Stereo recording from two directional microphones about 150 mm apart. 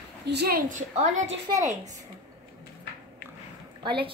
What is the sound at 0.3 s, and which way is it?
A woman's voice, 90° right.